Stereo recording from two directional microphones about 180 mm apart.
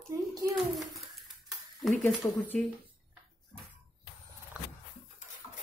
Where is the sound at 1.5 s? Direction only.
Centre (ahead or behind).